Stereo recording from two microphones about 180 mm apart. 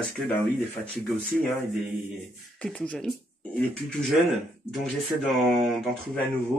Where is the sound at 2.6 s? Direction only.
5° left (ahead or behind).